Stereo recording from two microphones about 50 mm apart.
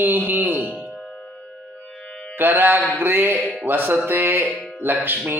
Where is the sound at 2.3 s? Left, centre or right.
Right.